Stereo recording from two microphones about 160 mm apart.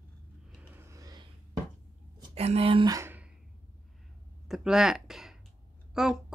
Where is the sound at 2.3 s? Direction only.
40° right (ahead or behind).